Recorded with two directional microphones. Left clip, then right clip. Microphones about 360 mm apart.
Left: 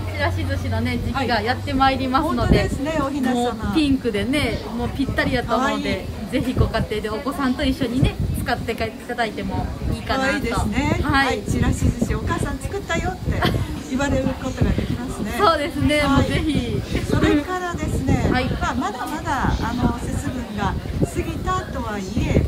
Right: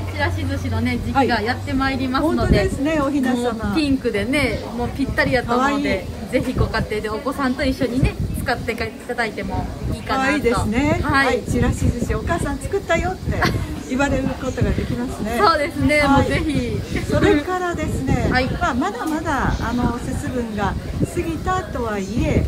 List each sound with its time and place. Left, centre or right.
1.2 s a woman's voice: left
2.4 s speech: centre
21.3 s speech: centre